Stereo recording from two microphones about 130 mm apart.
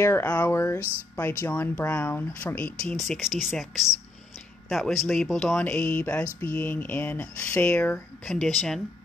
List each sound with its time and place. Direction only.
0.0 s speech: 15° left (ahead or behind)
0.5 s a sound: 20° left (ahead or behind)
1.4 s speech: 15° left (ahead or behind)
3.2 s speech: 5° right (ahead or behind)